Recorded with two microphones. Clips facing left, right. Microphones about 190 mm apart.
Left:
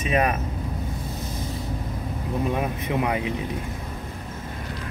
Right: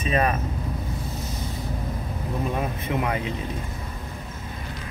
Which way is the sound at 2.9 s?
15° left (ahead or behind).